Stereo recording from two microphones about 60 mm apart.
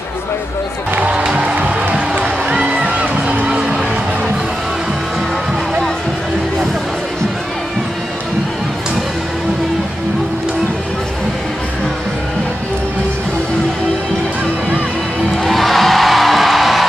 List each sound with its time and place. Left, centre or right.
0.9 s music: centre
15.3 s music: centre